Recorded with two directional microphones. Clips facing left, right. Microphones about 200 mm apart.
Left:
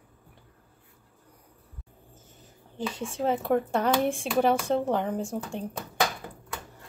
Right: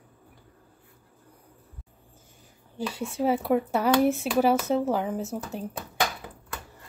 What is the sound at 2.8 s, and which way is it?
Speech, 10° right (ahead or behind).